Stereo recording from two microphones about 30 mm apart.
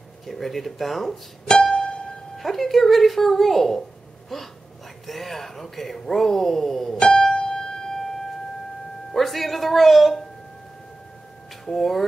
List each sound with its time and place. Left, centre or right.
0.3 s speech: centre
1.5 s music: left
2.3 s speech: centre
7.0 s music: left
9.1 s speech: centre
11.6 s speech: centre